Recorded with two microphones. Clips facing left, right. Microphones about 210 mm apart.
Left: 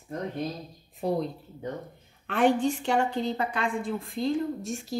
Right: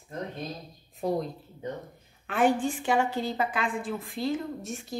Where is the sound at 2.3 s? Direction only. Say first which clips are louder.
Left 2 dB; 5° right (ahead or behind).